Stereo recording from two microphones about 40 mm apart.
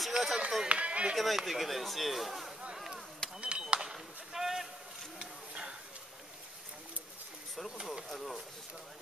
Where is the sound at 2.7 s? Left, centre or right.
Centre.